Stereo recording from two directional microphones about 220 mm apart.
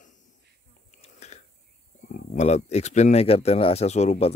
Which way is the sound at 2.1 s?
30° left (ahead or behind).